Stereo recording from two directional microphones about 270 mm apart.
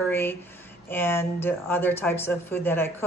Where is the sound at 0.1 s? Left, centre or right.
Centre.